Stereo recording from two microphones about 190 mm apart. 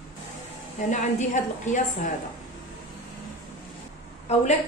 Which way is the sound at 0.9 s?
40° left (ahead or behind).